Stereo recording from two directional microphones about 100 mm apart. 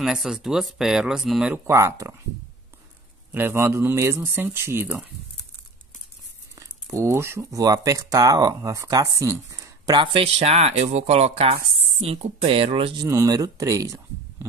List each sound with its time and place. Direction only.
0.0 s speech: 5° right (ahead or behind)
1.7 s speech: 30° right (ahead or behind)
3.3 s speech: 20° right (ahead or behind)
6.5 s speech: 30° right (ahead or behind)
9.9 s speech: 60° right (ahead or behind)
13.0 s speech: 35° right (ahead or behind)